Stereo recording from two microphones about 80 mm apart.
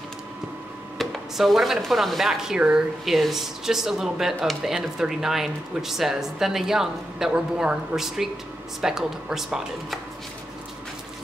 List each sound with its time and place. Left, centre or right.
0.9 s speech: centre